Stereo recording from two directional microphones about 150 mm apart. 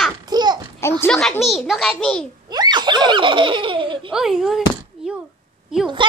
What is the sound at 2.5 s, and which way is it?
Laughter, 30° right (ahead or behind).